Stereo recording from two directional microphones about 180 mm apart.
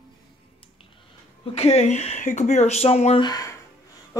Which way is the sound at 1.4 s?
35° left (ahead or behind).